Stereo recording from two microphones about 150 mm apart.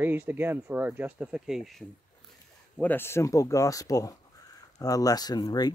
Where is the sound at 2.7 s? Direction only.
15° left (ahead or behind).